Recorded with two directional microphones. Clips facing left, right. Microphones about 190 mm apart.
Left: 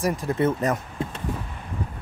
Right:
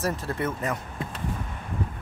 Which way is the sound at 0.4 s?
30° left (ahead or behind).